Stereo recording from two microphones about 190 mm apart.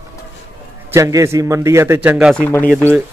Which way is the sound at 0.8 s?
15° right (ahead or behind).